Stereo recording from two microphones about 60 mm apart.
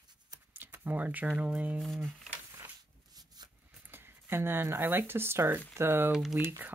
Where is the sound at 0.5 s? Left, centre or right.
Right.